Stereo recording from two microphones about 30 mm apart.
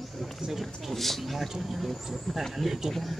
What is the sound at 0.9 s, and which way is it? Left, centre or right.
A man's voice, centre.